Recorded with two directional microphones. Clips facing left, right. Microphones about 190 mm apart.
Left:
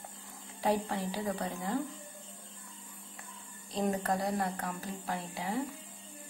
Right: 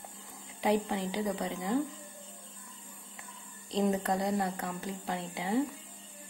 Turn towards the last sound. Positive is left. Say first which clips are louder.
# right 3 dB
turn(degrees=-25)  # may be behind; listen again after turning